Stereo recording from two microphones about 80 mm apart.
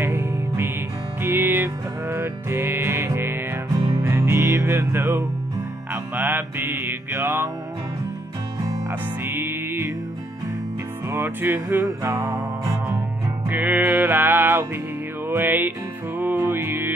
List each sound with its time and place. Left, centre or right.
0.0 s music: right
3.7 s music: right
4.0 s music: right
9.2 s music: right
11.1 s music: right
13.5 s music: right